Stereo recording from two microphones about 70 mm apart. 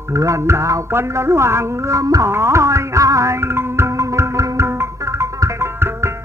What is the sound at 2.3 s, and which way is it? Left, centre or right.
Music, right.